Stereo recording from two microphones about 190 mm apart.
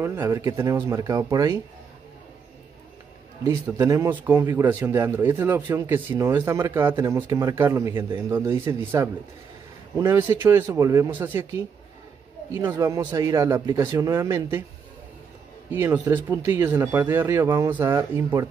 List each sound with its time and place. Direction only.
0.0 s speech: 15° right (ahead or behind)
3.4 s speech: 20° right (ahead or behind)
15.7 s speech: 10° right (ahead or behind)